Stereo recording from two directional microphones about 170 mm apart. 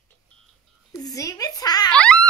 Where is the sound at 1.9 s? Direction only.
5° left (ahead or behind).